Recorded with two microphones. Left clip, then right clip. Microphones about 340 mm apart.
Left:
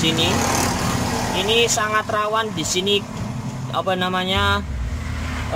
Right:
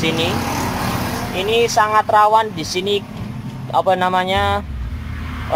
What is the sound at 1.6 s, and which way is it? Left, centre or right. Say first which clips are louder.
Speech: right 7 dB; centre.